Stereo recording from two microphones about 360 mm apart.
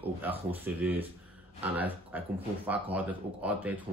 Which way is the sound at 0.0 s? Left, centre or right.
Centre.